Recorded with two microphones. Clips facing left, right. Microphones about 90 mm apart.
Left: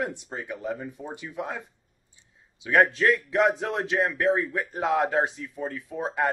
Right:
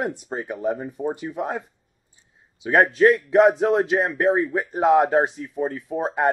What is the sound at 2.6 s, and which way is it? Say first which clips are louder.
Speech: right 5 dB; 30° right (ahead or behind).